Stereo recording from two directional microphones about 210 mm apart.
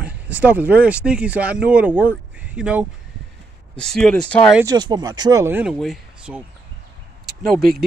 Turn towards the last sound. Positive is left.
turn(degrees=-45)  # may be behind; listen again after turning